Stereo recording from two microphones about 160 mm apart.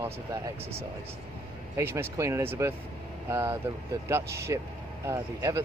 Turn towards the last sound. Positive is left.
turn(degrees=-20)  # may be behind; listen again after turning